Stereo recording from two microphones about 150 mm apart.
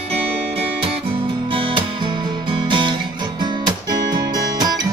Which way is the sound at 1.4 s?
35° right (ahead or behind).